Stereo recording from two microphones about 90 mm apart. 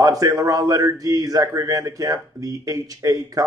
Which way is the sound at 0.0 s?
40° right (ahead or behind).